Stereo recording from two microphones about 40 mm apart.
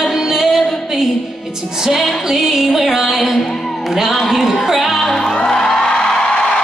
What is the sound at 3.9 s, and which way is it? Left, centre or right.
Speech, centre.